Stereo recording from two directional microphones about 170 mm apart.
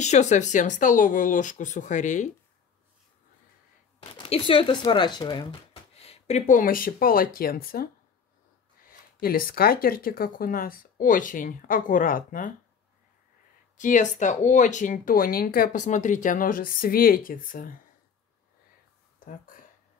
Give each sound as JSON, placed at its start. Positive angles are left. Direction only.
{"t": 0.0, "sound": "speech", "side_deg": 45}
{"t": 4.2, "sound": "speech", "side_deg": 30}
{"t": 13.7, "sound": "speech", "side_deg": 45}